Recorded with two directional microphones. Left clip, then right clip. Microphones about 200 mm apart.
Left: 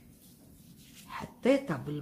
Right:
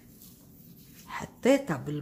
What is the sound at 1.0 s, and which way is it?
Speech, 20° right (ahead or behind).